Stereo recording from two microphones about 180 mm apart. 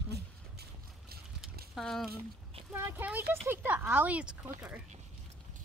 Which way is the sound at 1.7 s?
Centre (ahead or behind).